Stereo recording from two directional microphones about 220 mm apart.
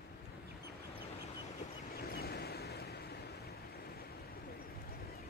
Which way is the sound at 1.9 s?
45° left (ahead or behind).